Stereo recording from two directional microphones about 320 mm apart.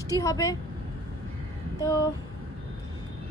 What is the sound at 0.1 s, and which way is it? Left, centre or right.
Speech, centre.